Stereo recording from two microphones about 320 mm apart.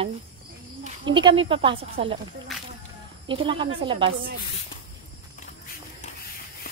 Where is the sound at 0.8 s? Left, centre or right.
Centre.